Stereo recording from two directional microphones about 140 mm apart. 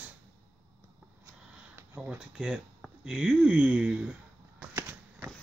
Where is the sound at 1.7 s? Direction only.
15° right (ahead or behind).